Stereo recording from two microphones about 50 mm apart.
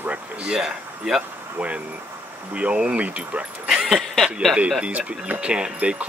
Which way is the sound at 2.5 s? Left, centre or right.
Right.